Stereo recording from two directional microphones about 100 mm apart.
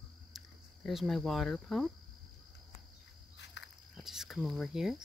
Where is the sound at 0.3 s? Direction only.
5° right (ahead or behind).